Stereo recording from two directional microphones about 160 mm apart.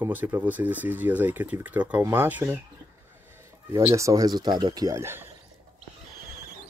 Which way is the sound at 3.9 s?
20° right (ahead or behind).